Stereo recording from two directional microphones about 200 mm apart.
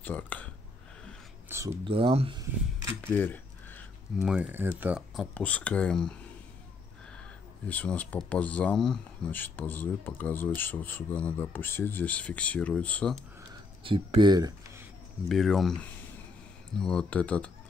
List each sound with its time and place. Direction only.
0.0 s speech: 10° left (ahead or behind)
1.5 s speech: 10° right (ahead or behind)
1.9 s speech: 30° right (ahead or behind)
3.0 s cutlery: 10° left (ahead or behind)
4.2 s speech: 5° right (ahead or behind)
7.6 s speech: 5° left (ahead or behind)
13.8 s speech: 25° right (ahead or behind)
15.2 s speech: centre (ahead or behind)